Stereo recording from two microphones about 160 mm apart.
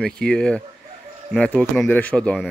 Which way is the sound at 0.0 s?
5° left (ahead or behind).